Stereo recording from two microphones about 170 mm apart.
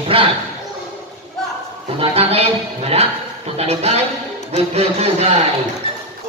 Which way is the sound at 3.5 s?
40° right (ahead or behind).